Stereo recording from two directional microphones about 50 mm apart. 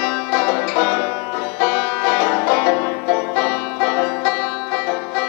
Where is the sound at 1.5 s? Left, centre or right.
Centre.